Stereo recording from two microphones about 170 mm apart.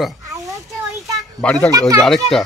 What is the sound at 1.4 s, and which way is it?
Speech, 5° left (ahead or behind).